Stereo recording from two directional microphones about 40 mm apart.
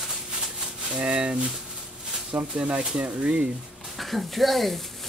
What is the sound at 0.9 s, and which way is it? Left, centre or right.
Speech, right.